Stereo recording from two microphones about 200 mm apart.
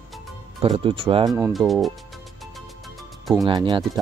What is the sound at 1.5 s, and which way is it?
Speech, centre (ahead or behind).